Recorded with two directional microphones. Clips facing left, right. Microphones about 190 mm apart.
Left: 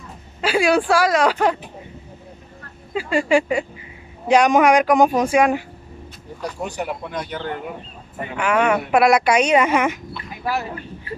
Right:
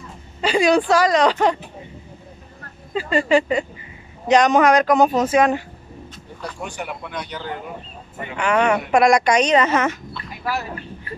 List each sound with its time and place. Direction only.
0.4 s speech: 5° left (ahead or behind)
2.9 s speech: 10° left (ahead or behind)
6.6 s speech: 40° left (ahead or behind)
8.4 s speech: 5° left (ahead or behind)